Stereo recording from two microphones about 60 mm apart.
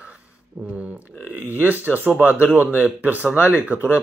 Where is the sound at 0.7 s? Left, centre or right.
Right.